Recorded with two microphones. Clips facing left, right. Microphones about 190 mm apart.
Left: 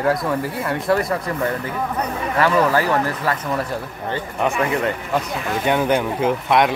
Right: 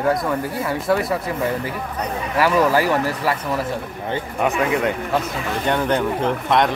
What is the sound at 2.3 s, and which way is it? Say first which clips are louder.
A man's voice: right 1 dB; 10° right (ahead or behind).